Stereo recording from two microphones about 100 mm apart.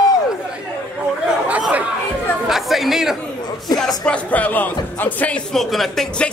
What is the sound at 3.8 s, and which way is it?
Speech, 5° left (ahead or behind).